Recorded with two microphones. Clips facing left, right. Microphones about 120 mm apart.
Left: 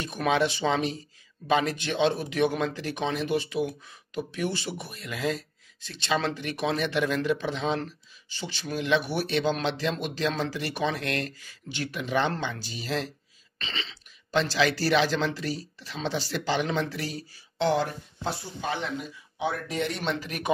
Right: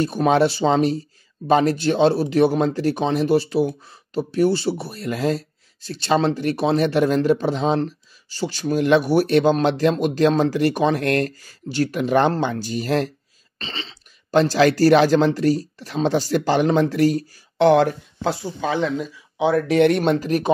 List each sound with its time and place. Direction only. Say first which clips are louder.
0.0 s speech: right 8 dB; 35° right (ahead or behind)
13.6 s speech: right 4 dB; 35° right (ahead or behind); by 20.0 s 75° right (ahead or behind)
20.0 s speech: right 12 dB; 45° right (ahead or behind)